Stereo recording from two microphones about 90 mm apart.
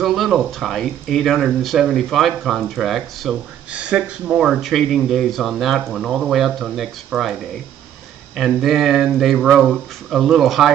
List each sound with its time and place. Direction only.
0.0 s speech: centre (ahead or behind)
3.7 s speech: 10° right (ahead or behind)
8.4 s speech: centre (ahead or behind)